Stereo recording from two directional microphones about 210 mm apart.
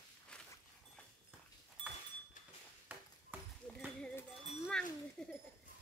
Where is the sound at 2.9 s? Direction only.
10° right (ahead or behind).